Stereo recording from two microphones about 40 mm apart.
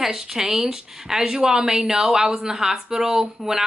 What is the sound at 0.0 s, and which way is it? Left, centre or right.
A woman's voice, centre.